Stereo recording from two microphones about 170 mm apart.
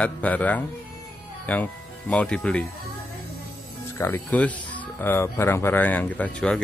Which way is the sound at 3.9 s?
10° left (ahead or behind).